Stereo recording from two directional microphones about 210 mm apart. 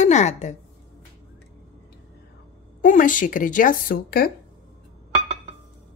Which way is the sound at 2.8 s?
40° left (ahead or behind).